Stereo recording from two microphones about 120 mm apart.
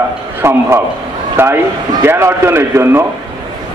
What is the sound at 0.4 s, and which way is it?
A man's voice, 20° right (ahead or behind).